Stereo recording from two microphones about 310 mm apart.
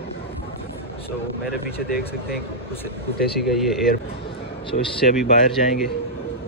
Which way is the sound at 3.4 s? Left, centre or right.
Centre.